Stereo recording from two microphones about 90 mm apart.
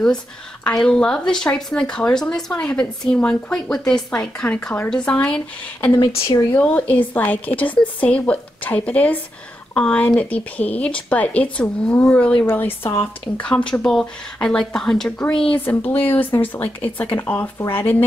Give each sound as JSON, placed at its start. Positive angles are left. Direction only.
{"t": 0.7, "sound": "speech", "side_deg": 10}
{"t": 15.5, "sound": "speech", "side_deg": 20}